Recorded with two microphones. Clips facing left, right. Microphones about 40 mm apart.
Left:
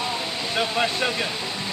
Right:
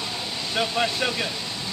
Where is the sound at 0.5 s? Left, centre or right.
Centre.